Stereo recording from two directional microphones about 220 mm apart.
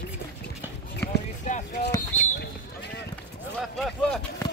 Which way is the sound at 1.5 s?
45° left (ahead or behind).